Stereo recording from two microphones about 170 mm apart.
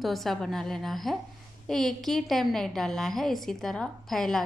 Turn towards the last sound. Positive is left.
turn(degrees=0)  # may be behind; listen again after turning